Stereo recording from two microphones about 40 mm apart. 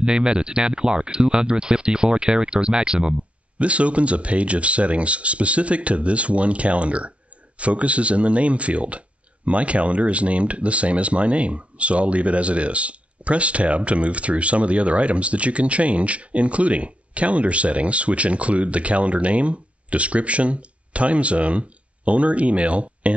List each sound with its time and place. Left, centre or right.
0.0 s speech: right